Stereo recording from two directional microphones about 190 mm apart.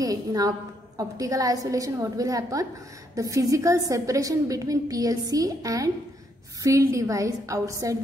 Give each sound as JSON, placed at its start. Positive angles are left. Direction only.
{"t": 0.0, "sound": "a woman's voice", "side_deg": -20}